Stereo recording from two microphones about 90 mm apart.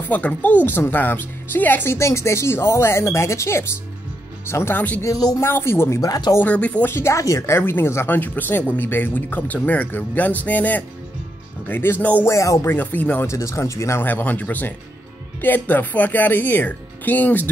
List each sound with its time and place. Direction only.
0.1 s speech: 20° left (ahead or behind)
5.0 s speech: 40° left (ahead or behind)
5.4 s speech: 30° left (ahead or behind)
5.9 s speech: 45° left (ahead or behind)
6.4 s speech: 15° left (ahead or behind)
6.9 s speech: 30° left (ahead or behind)
12.3 s speech: 35° left (ahead or behind); by 13.3 s 15° left (ahead or behind)
13.3 s speech: 35° left (ahead or behind)
14.0 s speech: 20° left (ahead or behind)